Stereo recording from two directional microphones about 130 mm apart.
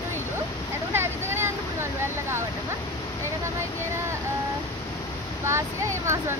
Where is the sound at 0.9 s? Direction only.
20° right (ahead or behind).